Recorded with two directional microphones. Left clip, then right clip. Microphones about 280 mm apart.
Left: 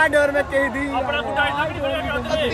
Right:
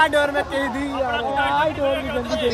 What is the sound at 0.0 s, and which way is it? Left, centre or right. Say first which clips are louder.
Speech: left 1 dB; centre.